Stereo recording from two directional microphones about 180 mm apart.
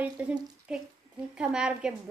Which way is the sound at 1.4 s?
5° right (ahead or behind).